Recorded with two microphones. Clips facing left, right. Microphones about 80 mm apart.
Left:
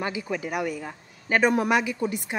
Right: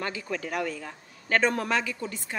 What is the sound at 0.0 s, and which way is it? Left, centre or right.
Speech, centre.